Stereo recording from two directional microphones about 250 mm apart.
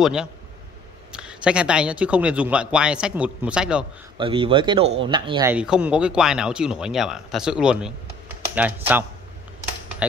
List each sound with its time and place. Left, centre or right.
0.0 s speech: centre
4.2 s speech: right
5.5 s speech: centre